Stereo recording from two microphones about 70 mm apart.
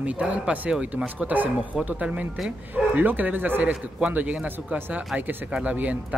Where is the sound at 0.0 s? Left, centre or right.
Centre.